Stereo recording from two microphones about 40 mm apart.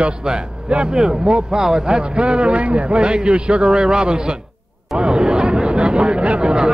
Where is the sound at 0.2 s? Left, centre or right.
Right.